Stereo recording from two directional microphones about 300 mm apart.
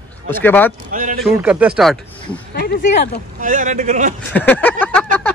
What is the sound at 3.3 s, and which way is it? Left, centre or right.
Speech, right.